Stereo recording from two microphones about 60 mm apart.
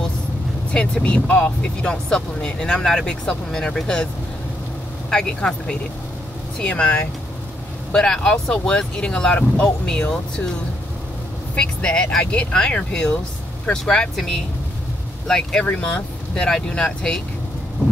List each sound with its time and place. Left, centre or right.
0.7 s speech: centre
5.1 s speech: centre
11.5 s speech: centre